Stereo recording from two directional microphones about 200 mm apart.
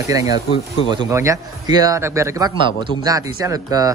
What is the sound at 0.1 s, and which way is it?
A man's voice, 15° right (ahead or behind).